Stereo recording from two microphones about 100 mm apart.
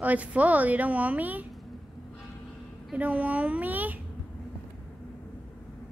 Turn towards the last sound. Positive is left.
turn(degrees=-15)  # may be behind; listen again after turning